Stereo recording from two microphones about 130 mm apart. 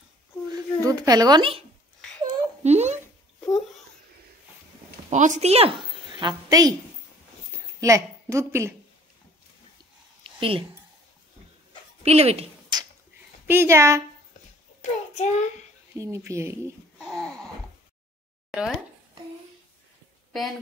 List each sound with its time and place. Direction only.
0.5 s a sound: 30° right (ahead or behind)
2.2 s a sound: 60° right (ahead or behind)
5.1 s a woman's voice: 65° right (ahead or behind); by 6.7 s 30° right (ahead or behind)
7.8 s a woman's voice: 25° right (ahead or behind)
10.2 s a sound: 45° right (ahead or behind)
12.0 s speech: 50° right (ahead or behind)
12.7 s finger snapping: 35° right (ahead or behind)
13.5 s speech: 20° right (ahead or behind)
14.8 s child singing: 65° left (ahead or behind)
16.0 s speech: 20° right (ahead or behind)
17.0 s a sound: 5° left (ahead or behind)
18.5 s speech: 5° right (ahead or behind)